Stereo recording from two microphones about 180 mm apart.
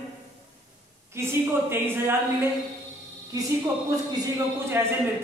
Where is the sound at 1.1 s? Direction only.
15° right (ahead or behind).